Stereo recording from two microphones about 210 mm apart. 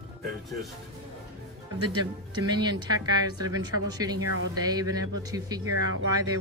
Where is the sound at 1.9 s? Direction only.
20° right (ahead or behind).